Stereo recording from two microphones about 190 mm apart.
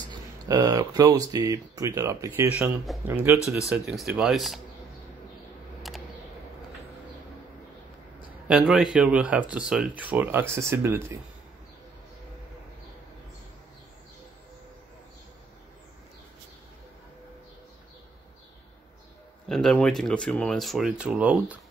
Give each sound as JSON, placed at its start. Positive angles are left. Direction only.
{"t": 0.1, "sound": "speech", "side_deg": -20}
{"t": 5.8, "sound": "computer keyboard", "side_deg": 0}
{"t": 8.5, "sound": "speech", "side_deg": -5}
{"t": 19.5, "sound": "speech", "side_deg": 5}